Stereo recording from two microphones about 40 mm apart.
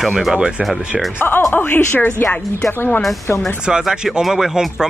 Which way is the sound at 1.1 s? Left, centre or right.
Left.